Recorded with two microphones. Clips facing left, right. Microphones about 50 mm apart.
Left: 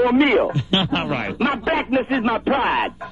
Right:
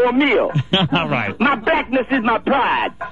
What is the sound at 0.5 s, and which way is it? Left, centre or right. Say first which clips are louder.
A man's voice: right 3 dB; right.